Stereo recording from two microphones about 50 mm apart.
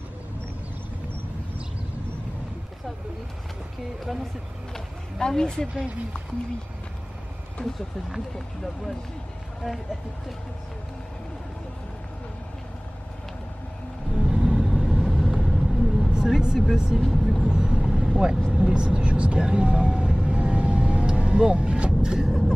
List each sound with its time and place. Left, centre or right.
4.0 s speech: centre
5.2 s speech: centre
14.2 s vehicle: centre
16.7 s speech: centre
17.0 s speech: centre
17.4 s vehicle: centre